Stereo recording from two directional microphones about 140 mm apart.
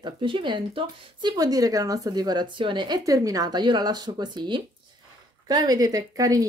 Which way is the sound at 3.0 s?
25° right (ahead or behind).